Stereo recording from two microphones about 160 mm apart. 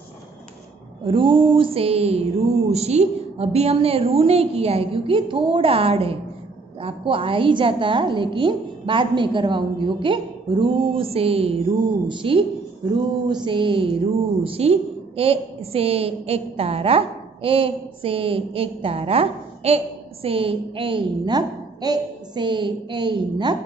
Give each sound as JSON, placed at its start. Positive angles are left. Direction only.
{"t": 1.1, "sound": "a woman's voice", "side_deg": -35}